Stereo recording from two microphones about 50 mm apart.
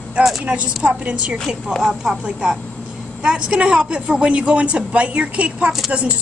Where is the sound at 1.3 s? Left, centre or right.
Centre.